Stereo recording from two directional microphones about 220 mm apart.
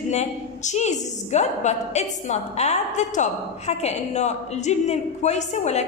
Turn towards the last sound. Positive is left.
turn(degrees=30)  # may be behind; listen again after turning